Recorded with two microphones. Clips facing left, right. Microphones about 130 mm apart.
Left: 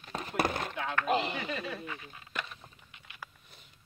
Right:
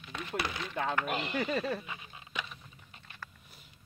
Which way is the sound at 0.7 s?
15° right (ahead or behind).